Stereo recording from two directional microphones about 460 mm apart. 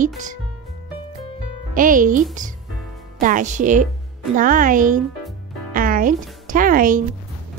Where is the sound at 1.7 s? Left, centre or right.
Centre.